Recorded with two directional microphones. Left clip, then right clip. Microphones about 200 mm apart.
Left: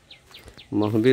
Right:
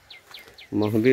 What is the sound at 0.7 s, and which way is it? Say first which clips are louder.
Speech: left 1 dB; 20° left (ahead or behind).